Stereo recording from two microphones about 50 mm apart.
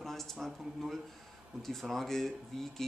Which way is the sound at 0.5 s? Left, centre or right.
Centre.